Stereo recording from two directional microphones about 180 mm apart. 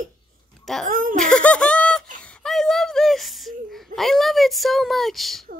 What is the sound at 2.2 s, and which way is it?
Whimper, 5° left (ahead or behind).